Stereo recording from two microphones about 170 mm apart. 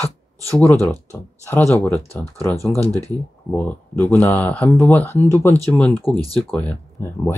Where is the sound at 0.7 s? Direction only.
15° left (ahead or behind).